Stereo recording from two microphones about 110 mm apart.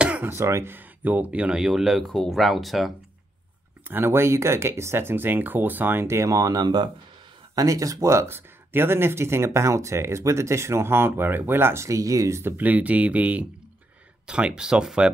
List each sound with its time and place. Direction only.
0.0 s speech: 15° right (ahead or behind)
3.8 s speech: 20° right (ahead or behind)